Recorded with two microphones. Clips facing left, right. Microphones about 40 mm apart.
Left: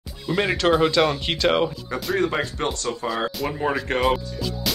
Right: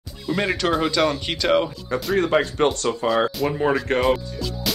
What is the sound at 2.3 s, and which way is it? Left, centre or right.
Speech, centre.